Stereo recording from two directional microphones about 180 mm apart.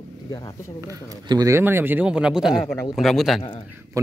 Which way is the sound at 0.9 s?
20° right (ahead or behind).